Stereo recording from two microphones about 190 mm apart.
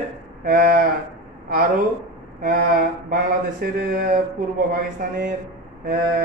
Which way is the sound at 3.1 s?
50° right (ahead or behind).